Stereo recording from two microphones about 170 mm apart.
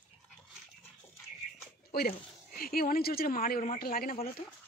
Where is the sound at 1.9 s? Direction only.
60° left (ahead or behind).